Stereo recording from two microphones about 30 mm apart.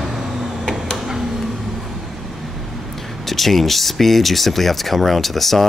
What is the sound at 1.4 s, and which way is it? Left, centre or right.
Vehicle, centre.